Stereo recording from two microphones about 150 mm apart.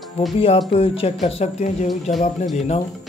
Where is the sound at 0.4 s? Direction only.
35° left (ahead or behind).